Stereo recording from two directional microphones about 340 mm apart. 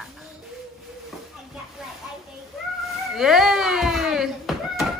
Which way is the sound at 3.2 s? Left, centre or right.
Centre.